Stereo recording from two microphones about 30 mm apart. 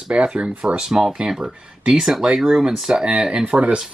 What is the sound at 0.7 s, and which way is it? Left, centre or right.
Speech, right.